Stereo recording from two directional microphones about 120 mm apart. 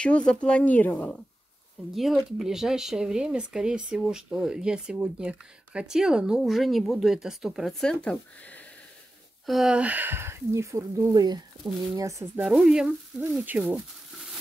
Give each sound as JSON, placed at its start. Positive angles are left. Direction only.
{"t": 0.0, "sound": "speech", "side_deg": 5}
{"t": 2.0, "sound": "speech", "side_deg": 0}
{"t": 9.5, "sound": "speech", "side_deg": -5}
{"t": 12.4, "sound": "speech", "side_deg": -5}